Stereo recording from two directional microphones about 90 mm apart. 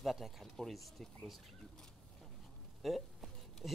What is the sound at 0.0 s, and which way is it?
Speech, centre (ahead or behind).